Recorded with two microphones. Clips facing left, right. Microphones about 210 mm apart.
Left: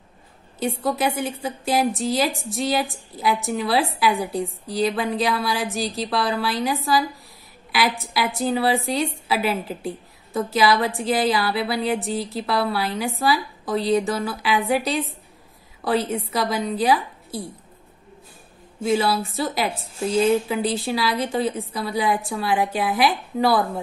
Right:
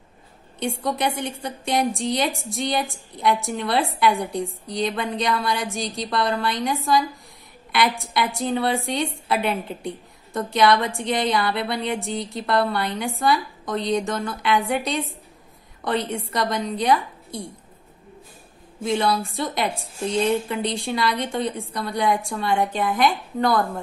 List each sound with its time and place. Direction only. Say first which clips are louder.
0.8 s a woman's voice: left 2 dB; centre (ahead or behind)
18.8 s a woman's voice: left 1 dB; 5° left (ahead or behind)